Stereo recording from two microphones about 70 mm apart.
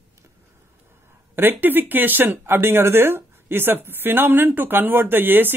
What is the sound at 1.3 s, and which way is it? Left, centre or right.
Speech, right.